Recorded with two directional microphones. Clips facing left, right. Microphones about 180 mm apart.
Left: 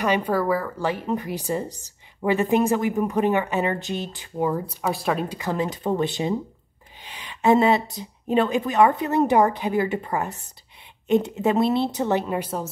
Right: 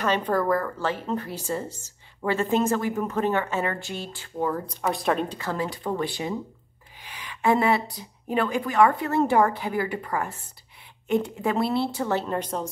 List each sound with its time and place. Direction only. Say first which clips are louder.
0.0 s a woman's voice: left 2 dB; 10° left (ahead or behind)
5.4 s a woman's voice: left 3 dB; 20° left (ahead or behind)